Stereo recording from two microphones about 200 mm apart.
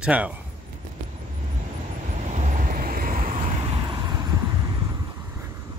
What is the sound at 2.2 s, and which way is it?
Vehicle, 35° right (ahead or behind).